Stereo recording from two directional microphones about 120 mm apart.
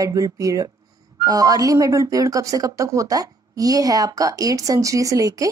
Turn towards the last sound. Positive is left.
turn(degrees=-30)  # may be behind; listen again after turning